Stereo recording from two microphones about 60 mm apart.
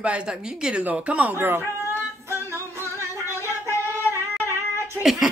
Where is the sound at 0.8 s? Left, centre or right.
Right.